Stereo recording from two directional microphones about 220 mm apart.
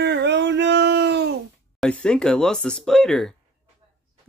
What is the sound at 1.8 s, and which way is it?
Speech, 5° left (ahead or behind).